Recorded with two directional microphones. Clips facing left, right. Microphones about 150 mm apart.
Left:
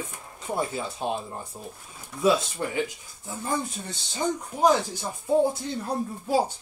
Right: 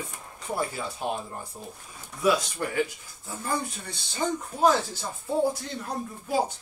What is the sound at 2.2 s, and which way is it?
Speech, 25° left (ahead or behind).